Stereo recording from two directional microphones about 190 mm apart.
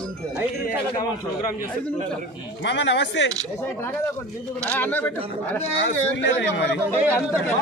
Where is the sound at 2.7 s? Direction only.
65° left (ahead or behind).